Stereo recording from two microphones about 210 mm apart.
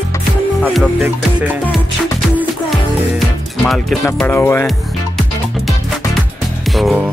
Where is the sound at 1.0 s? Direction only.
10° right (ahead or behind).